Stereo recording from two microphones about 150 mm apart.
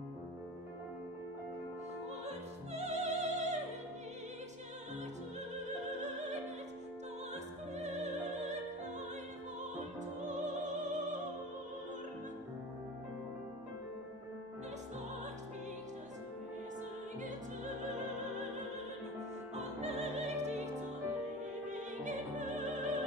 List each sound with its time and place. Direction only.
2.2 s music: 45° right (ahead or behind)
7.7 s opera: 50° right (ahead or behind)
10.2 s opera: 55° right (ahead or behind)
19.5 s opera: 45° right (ahead or behind)
21.6 s opera: 55° right (ahead or behind)